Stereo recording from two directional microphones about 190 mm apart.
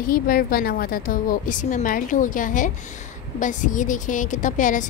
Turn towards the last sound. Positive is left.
turn(degrees=40)  # may be behind; listen again after turning